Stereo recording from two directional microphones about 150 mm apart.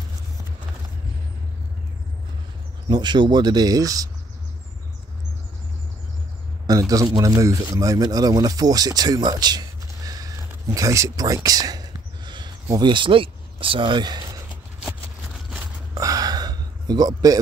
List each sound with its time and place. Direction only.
2.9 s speech: 30° right (ahead or behind)
6.7 s speech: 25° right (ahead or behind)
15.9 s a sound: 25° right (ahead or behind)